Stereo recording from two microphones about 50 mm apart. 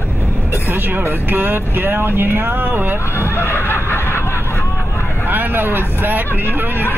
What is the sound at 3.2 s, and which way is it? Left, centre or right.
Snicker, left.